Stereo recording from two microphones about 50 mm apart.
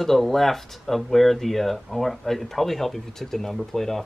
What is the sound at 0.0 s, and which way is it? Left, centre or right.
Speech, centre.